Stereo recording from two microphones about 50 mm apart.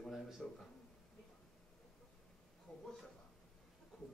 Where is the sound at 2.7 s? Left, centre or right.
Centre.